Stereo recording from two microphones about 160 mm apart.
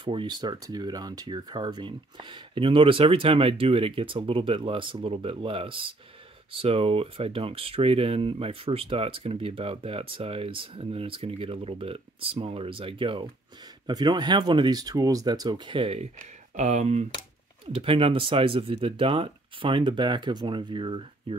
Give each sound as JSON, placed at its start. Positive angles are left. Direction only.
{"t": 0.0, "sound": "speech", "side_deg": -30}
{"t": 16.5, "sound": "speech", "side_deg": -45}
{"t": 17.7, "sound": "speech", "side_deg": -35}